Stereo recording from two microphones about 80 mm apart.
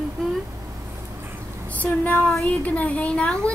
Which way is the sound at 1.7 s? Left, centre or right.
Centre.